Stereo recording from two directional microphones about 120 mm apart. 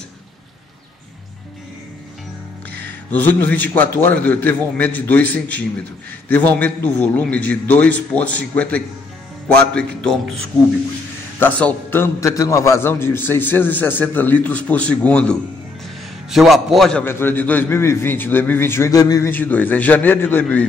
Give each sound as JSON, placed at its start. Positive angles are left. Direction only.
{"t": 3.1, "sound": "a man's voice", "side_deg": 15}
{"t": 11.3, "sound": "a man's voice", "side_deg": 15}
{"t": 16.3, "sound": "a man's voice", "side_deg": 0}
{"t": 17.0, "sound": "a man's voice", "side_deg": 20}
{"t": 19.3, "sound": "a man's voice", "side_deg": 15}